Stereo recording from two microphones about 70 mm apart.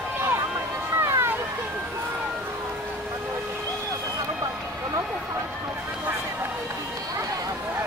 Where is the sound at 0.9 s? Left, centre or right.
Right.